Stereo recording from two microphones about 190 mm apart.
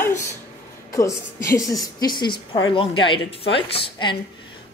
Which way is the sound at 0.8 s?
15° left (ahead or behind).